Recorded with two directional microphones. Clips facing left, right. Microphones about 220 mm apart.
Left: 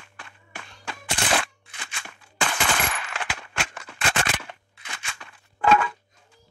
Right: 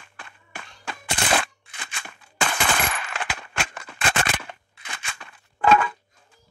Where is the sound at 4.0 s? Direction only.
55° right (ahead or behind).